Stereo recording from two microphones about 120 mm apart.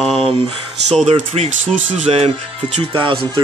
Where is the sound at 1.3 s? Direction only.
60° right (ahead or behind).